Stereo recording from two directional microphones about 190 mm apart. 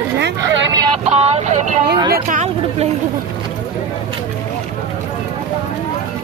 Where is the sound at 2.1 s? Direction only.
40° right (ahead or behind).